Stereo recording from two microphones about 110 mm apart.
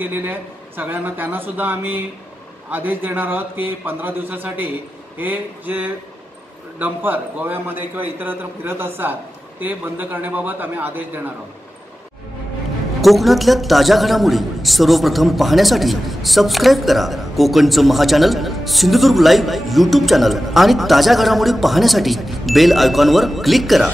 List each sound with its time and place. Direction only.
0.0 s a man's voice: 15° right (ahead or behind)
13.0 s a man's voice: centre (ahead or behind)